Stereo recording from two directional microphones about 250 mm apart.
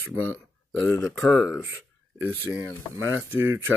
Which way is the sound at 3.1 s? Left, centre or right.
Centre.